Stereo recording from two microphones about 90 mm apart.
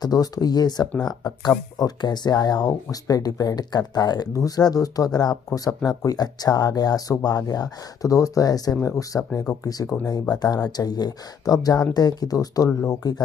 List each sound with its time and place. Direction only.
0.0 s speech: 45° left (ahead or behind)